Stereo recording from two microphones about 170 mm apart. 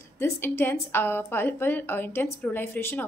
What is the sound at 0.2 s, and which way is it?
A woman's voice, 15° left (ahead or behind).